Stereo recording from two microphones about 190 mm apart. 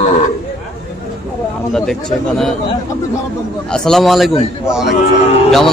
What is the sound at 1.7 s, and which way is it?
Speech, 5° left (ahead or behind).